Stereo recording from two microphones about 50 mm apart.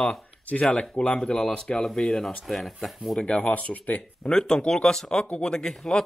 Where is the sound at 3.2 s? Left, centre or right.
Left.